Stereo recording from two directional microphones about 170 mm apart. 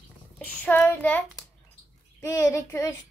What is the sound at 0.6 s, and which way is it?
Speech, 10° left (ahead or behind).